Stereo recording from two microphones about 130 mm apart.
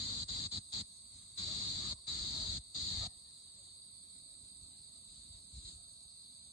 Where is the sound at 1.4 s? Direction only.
25° left (ahead or behind).